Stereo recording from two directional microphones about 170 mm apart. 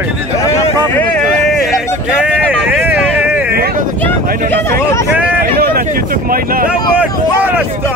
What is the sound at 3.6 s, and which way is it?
Vehicle, 60° right (ahead or behind).